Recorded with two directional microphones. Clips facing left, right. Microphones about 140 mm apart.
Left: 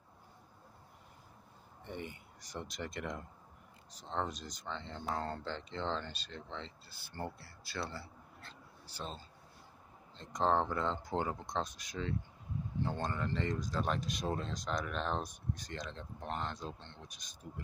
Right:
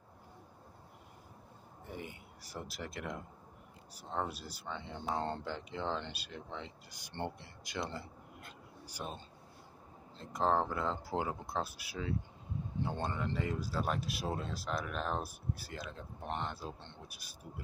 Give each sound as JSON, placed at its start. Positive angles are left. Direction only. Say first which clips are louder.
{"t": 1.9, "sound": "speech", "louder": "left 1 dB", "side_deg": -5}
{"t": 5.1, "sound": "speech", "louder": "right 2 dB", "side_deg": -25}
{"t": 5.4, "sound": "speech", "louder": "even", "side_deg": -10}
{"t": 8.4, "sound": "a sound", "louder": "right 3 dB", "side_deg": -15}
{"t": 10.1, "sound": "speech", "louder": "even", "side_deg": -5}